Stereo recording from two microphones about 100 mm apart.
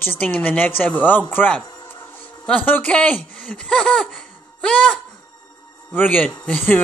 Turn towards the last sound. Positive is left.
turn(degrees=15)  # may be behind; listen again after turning